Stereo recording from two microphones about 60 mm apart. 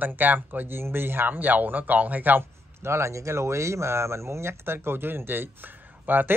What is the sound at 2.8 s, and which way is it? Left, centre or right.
Speech, right.